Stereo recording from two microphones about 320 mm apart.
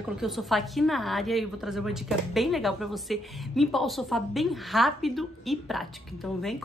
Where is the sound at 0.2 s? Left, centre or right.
Centre.